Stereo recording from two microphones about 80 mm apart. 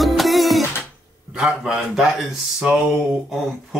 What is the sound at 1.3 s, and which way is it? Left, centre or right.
A man's voice, centre.